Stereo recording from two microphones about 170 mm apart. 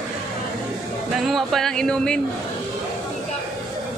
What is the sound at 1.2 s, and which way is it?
Speech, centre (ahead or behind).